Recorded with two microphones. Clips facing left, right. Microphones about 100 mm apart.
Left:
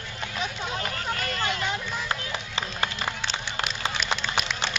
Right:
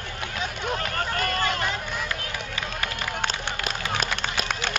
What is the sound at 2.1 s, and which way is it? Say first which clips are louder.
Run: left 1 dB; 30° left (ahead or behind).